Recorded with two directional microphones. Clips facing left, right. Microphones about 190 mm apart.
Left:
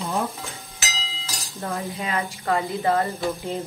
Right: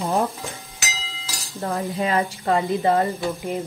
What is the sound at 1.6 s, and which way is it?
Speech, 30° right (ahead or behind).